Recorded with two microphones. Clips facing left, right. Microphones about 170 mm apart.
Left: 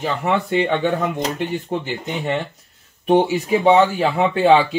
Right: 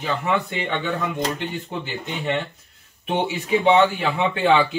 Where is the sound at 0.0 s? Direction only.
40° left (ahead or behind).